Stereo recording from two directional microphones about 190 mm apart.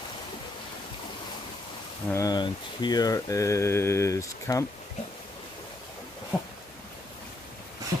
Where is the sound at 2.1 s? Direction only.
20° left (ahead or behind).